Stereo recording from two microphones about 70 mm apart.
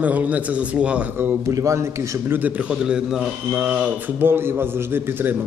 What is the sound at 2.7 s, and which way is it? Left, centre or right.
A man's voice, centre.